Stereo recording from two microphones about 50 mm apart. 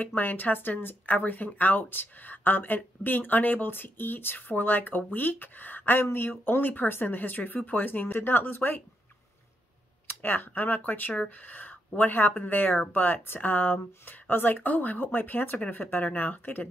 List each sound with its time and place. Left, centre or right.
0.0 s speech: left
10.0 s speech: left